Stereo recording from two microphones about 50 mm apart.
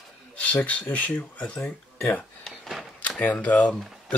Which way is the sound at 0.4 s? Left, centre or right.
Left.